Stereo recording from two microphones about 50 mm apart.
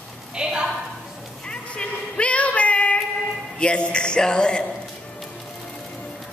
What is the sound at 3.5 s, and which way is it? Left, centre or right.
A man's voice, left.